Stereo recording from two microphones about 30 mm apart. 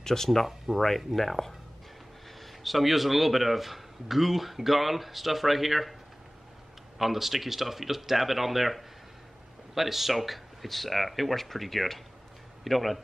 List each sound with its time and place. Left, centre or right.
0.0 s speech: centre
7.0 s speech: centre